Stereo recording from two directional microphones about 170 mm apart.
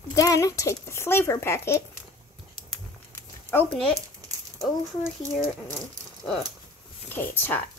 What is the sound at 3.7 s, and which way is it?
Speech, centre (ahead or behind).